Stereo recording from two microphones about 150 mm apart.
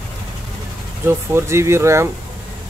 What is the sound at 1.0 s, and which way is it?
Speech, 15° right (ahead or behind).